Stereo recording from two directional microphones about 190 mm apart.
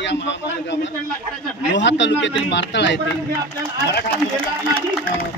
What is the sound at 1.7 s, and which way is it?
A man's voice, 70° left (ahead or behind).